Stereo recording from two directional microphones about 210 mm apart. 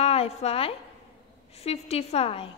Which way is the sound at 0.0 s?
30° left (ahead or behind).